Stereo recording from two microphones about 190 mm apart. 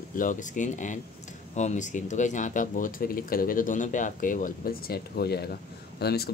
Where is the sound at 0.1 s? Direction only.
45° left (ahead or behind).